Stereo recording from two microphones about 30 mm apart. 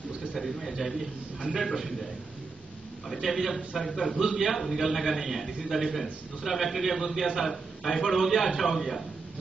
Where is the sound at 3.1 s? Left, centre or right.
Centre.